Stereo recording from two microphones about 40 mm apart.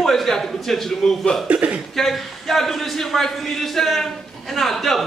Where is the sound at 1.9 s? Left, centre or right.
Centre.